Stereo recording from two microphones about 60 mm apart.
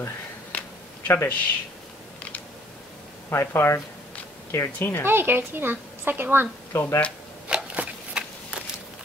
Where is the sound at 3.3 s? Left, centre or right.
Left.